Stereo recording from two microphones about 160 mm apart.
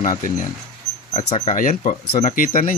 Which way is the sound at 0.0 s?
55° left (ahead or behind).